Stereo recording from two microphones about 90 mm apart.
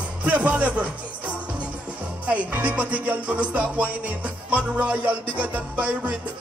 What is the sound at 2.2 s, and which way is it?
Music, 15° right (ahead or behind).